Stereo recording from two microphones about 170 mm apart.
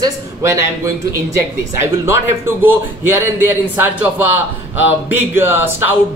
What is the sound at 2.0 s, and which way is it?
A man's voice, 15° right (ahead or behind).